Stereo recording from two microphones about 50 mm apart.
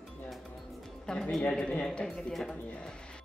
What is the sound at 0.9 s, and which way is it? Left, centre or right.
Music, centre.